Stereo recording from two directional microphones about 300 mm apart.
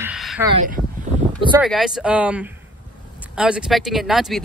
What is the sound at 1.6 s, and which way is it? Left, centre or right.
Speech, centre.